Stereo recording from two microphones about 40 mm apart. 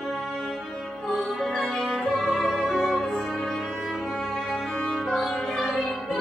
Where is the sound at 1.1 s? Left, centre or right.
Centre.